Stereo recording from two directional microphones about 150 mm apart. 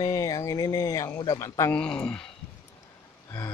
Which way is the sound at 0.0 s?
25° left (ahead or behind).